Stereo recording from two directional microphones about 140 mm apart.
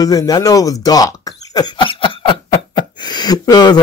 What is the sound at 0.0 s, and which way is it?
Speech, 25° left (ahead or behind).